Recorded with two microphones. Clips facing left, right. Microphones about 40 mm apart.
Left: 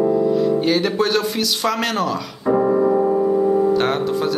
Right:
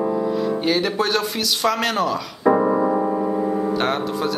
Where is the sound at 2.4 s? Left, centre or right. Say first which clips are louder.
Left 1 dB; right.